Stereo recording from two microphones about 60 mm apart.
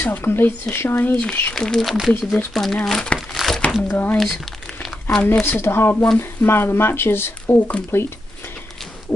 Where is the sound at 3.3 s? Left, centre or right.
Centre.